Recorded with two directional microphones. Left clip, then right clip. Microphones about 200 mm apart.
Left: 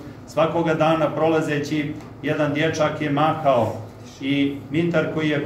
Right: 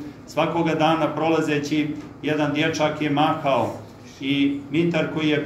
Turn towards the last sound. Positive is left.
turn(degrees=10)  # may be behind; listen again after turning